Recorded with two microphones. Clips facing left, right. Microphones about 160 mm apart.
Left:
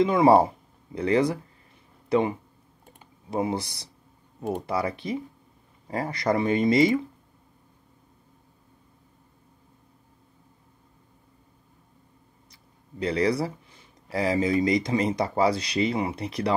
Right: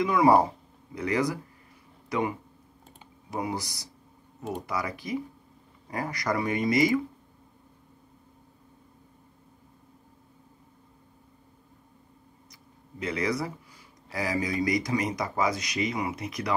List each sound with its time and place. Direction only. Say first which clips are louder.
0.0 s speech: left 3 dB; 25° left (ahead or behind)
13.0 s speech: left 5 dB; 30° left (ahead or behind)